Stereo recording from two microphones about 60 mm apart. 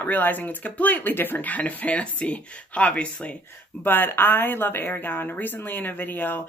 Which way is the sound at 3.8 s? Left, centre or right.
Left.